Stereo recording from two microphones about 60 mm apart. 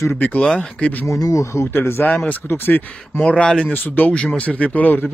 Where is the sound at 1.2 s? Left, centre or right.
Left.